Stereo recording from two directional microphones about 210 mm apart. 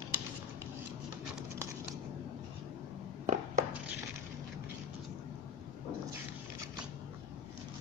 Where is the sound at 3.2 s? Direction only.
40° right (ahead or behind).